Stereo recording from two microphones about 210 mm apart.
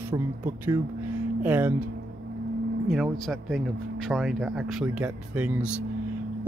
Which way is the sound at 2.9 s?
Centre (ahead or behind).